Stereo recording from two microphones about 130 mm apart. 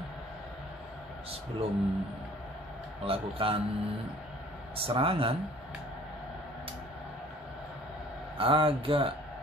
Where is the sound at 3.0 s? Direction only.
45° right (ahead or behind).